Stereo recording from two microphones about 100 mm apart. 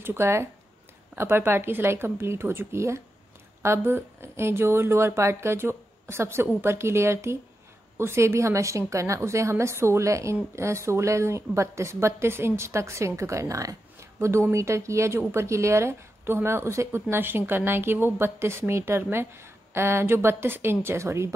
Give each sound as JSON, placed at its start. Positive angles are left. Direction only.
{"t": 0.0, "sound": "a woman's voice", "side_deg": -25}